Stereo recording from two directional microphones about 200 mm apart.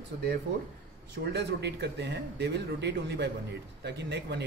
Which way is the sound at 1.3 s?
55° right (ahead or behind).